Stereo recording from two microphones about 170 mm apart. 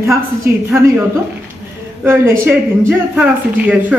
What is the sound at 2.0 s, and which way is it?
A woman's voice, 15° right (ahead or behind).